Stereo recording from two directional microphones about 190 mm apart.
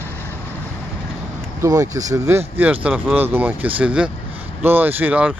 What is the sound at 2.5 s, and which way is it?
Speech, 5° right (ahead or behind).